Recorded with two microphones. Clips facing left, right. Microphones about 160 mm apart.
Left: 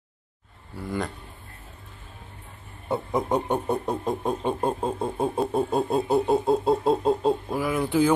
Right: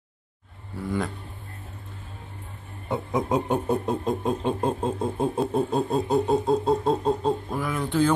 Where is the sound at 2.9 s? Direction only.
Centre (ahead or behind).